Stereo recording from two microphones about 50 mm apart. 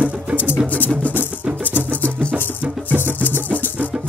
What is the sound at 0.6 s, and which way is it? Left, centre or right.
Music, left.